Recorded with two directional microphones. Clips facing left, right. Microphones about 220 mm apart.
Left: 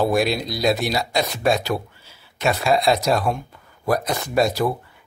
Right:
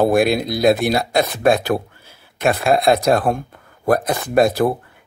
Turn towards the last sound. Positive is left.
turn(degrees=-55)  # may be behind; listen again after turning